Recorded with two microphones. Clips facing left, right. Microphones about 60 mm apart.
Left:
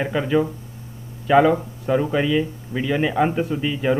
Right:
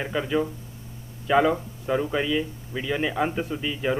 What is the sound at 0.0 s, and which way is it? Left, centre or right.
A man's voice, left.